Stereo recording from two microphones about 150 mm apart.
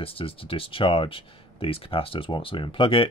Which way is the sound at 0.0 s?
40° left (ahead or behind).